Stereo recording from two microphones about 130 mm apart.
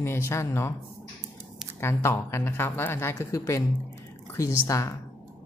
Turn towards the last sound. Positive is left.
turn(degrees=25)  # may be behind; listen again after turning